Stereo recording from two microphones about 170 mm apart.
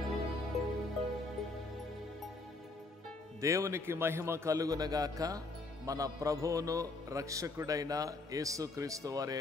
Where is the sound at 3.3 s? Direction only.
20° right (ahead or behind).